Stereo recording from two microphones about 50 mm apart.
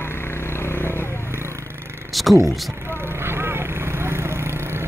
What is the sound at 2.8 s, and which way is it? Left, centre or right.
Vehicle, right.